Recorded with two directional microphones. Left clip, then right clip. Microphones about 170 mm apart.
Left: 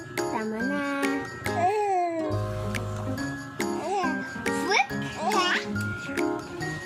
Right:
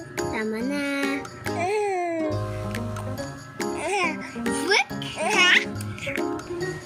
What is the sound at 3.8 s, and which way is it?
Music, 20° right (ahead or behind).